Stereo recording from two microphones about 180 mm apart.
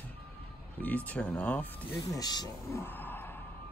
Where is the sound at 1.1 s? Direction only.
10° left (ahead or behind).